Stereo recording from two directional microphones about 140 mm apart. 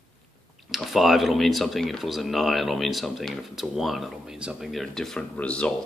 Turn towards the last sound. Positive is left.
turn(degrees=10)  # may be behind; listen again after turning